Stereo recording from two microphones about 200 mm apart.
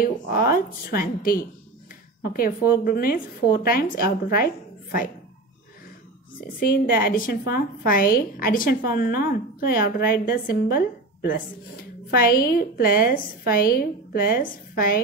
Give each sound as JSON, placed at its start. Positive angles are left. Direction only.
{"t": 0.0, "sound": "a woman's voice", "side_deg": 45}
{"t": 6.6, "sound": "a woman's voice", "side_deg": 45}
{"t": 12.1, "sound": "a woman's voice", "side_deg": 45}